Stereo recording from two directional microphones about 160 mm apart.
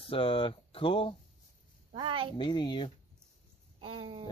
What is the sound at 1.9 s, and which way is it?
Speech, 30° right (ahead or behind).